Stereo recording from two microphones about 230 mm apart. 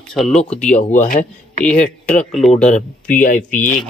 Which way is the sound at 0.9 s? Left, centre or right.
Left.